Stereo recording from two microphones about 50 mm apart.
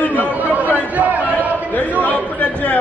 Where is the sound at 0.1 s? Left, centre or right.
Right.